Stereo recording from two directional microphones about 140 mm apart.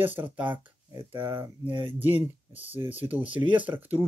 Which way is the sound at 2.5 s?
10° right (ahead or behind).